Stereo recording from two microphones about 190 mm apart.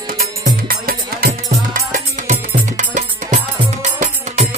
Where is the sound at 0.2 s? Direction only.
50° right (ahead or behind).